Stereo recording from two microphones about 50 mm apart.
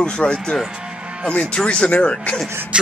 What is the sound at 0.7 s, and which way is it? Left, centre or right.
Music, centre.